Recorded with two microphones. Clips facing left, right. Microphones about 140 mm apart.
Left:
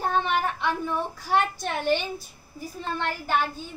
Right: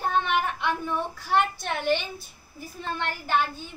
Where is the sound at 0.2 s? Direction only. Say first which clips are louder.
Even; 40° left (ahead or behind).